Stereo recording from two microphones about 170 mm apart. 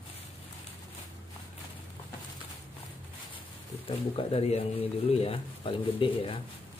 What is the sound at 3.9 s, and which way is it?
Speech, 35° left (ahead or behind).